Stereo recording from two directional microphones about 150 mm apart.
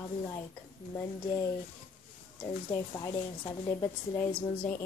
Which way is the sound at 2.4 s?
20° left (ahead or behind).